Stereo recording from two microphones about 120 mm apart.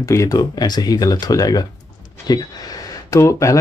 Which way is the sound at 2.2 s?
30° left (ahead or behind).